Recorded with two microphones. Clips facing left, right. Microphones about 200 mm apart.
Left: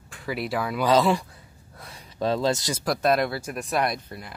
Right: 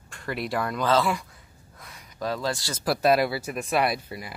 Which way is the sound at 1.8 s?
30° left (ahead or behind).